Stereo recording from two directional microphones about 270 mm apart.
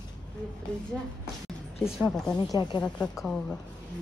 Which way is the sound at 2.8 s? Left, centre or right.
Centre.